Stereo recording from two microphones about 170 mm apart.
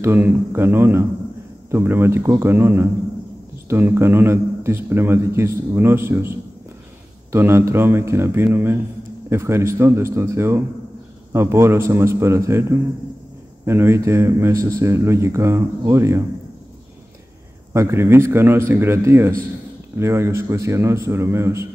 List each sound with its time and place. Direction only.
0.0 s a man's voice: 15° right (ahead or behind)
13.7 s a man's voice: 15° right (ahead or behind)
17.7 s a man's voice: 15° right (ahead or behind)